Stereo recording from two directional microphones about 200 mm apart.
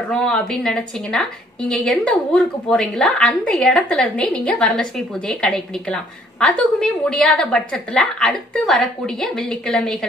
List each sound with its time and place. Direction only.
0.1 s a woman's voice: 5° left (ahead or behind)